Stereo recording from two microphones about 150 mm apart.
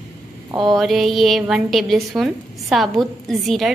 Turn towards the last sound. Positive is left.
turn(degrees=0)  # may be behind; listen again after turning